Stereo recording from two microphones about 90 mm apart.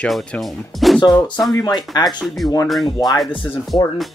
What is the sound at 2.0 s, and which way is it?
Speech, centre (ahead or behind).